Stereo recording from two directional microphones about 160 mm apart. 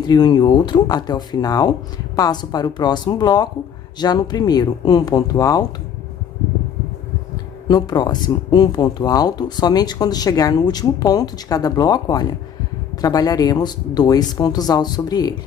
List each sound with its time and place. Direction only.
0.0 s speech: 25° left (ahead or behind)
7.6 s speech: 25° left (ahead or behind)